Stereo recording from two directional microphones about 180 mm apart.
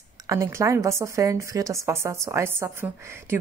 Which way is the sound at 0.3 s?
15° right (ahead or behind).